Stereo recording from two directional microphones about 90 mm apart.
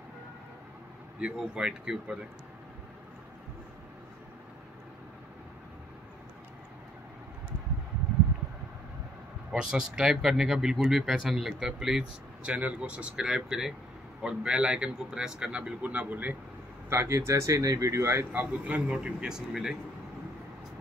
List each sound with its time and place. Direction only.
1.2 s speech: 10° right (ahead or behind)
9.5 s speech: 5° right (ahead or behind)
16.9 s speech: 30° right (ahead or behind)
18.3 s speech: 20° right (ahead or behind)